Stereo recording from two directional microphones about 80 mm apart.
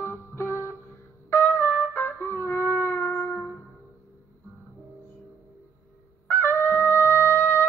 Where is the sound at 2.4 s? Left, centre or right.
Left.